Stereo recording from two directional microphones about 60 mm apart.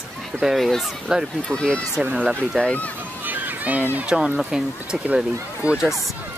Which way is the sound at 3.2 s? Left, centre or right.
Right.